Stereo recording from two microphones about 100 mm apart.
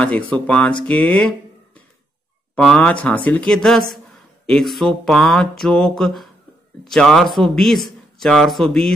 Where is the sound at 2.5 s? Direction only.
10° left (ahead or behind).